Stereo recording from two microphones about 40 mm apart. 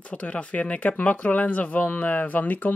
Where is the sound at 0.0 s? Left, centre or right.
Left.